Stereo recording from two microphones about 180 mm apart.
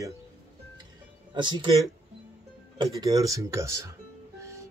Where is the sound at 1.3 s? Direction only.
25° right (ahead or behind).